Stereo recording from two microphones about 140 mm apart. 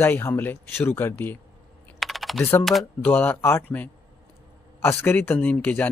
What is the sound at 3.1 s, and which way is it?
A man's voice, 15° left (ahead or behind).